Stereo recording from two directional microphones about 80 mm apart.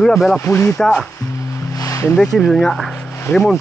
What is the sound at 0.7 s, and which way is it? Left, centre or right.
Speech, centre.